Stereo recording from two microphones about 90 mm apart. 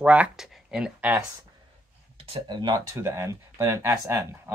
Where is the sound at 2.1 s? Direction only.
90° right.